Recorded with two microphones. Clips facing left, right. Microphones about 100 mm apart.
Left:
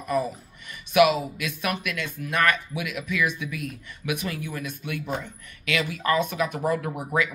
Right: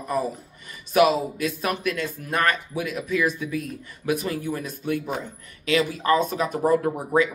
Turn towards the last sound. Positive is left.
turn(degrees=-35)  # may be behind; listen again after turning